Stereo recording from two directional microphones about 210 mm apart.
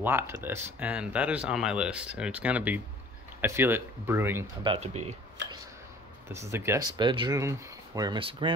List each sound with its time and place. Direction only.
0.0 s speech: 10° right (ahead or behind)
4.6 s speech: 30° right (ahead or behind)
6.3 s speech: 10° right (ahead or behind)